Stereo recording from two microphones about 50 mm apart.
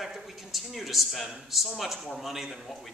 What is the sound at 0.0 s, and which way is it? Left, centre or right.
A man's voice, centre.